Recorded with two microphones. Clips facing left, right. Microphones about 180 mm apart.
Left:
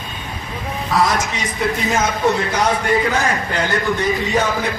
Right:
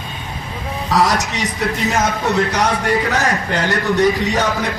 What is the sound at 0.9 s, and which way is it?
Speech, 70° right (ahead or behind).